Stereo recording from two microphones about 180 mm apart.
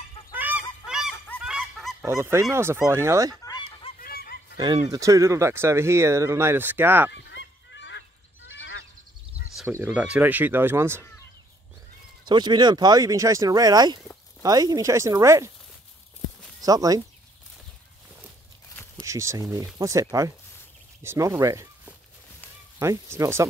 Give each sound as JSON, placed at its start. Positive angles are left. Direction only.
{"t": 0.3, "sound": "goose", "side_deg": -10}
{"t": 1.1, "sound": "goose", "side_deg": 10}
{"t": 1.4, "sound": "goose", "side_deg": 0}
{"t": 2.0, "sound": "speech", "side_deg": -15}
{"t": 3.4, "sound": "fowl", "side_deg": 30}
{"t": 4.0, "sound": "honk", "side_deg": 55}
{"t": 4.6, "sound": "speech", "side_deg": -25}
{"t": 7.1, "sound": "goose", "side_deg": 85}
{"t": 9.7, "sound": "speech", "side_deg": -10}
{"t": 12.3, "sound": "speech", "side_deg": -25}
{"t": 16.6, "sound": "speech", "side_deg": -20}
{"t": 19.0, "sound": "speech", "side_deg": -15}